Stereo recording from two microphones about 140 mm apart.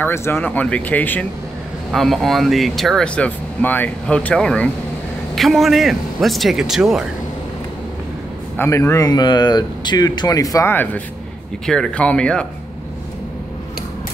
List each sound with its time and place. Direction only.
0.0 s speech: 20° left (ahead or behind)
1.9 s speech: centre (ahead or behind)
8.5 s speech: 20° left (ahead or behind)
11.6 s speech: 5° left (ahead or behind)